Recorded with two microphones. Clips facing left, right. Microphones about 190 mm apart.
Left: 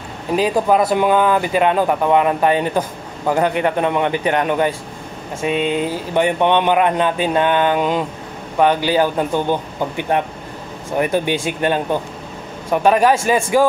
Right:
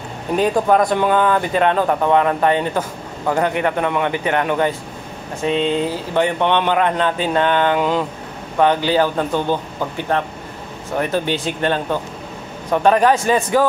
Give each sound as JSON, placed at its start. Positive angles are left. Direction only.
{"t": 0.4, "sound": "a man's voice", "side_deg": 5}